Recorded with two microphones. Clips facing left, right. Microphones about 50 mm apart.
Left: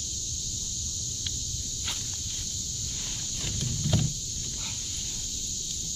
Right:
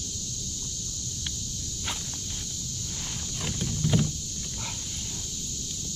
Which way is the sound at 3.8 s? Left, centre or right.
Centre.